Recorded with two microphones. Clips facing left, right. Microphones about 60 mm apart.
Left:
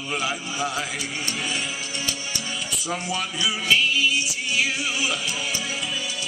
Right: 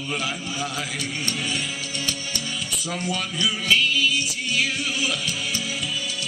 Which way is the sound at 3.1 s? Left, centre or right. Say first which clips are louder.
Even; centre.